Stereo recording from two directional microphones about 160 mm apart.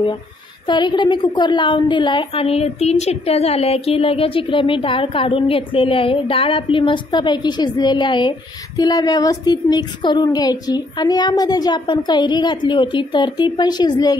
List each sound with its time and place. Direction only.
0.7 s a woman's voice: 30° left (ahead or behind)